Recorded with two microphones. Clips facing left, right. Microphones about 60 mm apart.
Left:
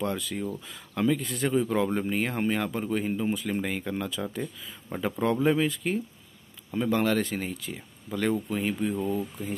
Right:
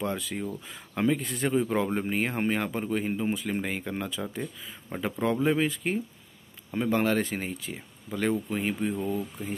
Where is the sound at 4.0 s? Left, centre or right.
Centre.